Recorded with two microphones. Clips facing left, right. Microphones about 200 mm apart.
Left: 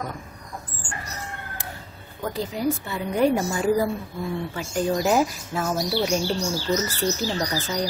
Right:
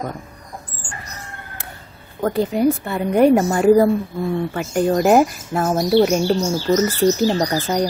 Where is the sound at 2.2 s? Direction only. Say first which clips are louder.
Right 8 dB; 60° right (ahead or behind).